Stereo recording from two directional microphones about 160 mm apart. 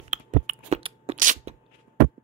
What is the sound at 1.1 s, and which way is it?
Crunch, 55° right (ahead or behind).